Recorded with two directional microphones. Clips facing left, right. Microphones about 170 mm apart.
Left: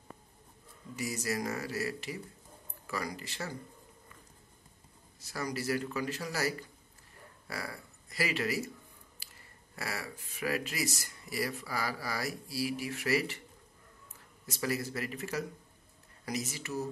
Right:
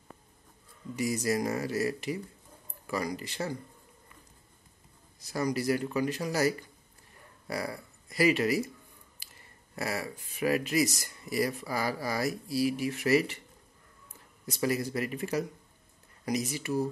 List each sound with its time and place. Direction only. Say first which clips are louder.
0.9 s speech: right 6 dB; 20° right (ahead or behind)
5.2 s speech: right 6 dB; 20° right (ahead or behind)
9.8 s speech: right 6 dB; 20° right (ahead or behind)
14.4 s a man's voice: right 5 dB; 20° right (ahead or behind)